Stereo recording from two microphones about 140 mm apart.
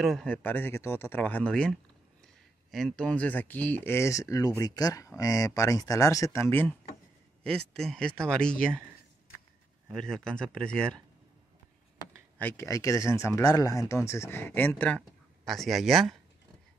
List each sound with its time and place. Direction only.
0.0 s speech: 5° left (ahead or behind)
7.4 s speech: 5° left (ahead or behind)
9.8 s speech: 5° left (ahead or behind)
12.4 s speech: 15° left (ahead or behind)
15.0 s speech: centre (ahead or behind)